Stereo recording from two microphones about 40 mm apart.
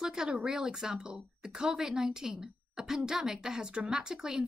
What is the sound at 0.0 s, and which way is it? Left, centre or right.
Speech, centre.